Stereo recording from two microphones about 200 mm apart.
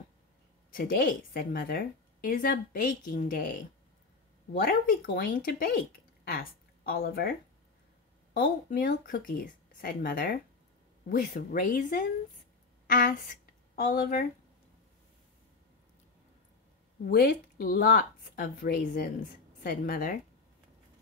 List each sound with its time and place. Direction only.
0.7 s a woman's voice: 45° left (ahead or behind)
4.6 s a woman's voice: 45° left (ahead or behind)
17.0 s a woman's voice: 50° left (ahead or behind)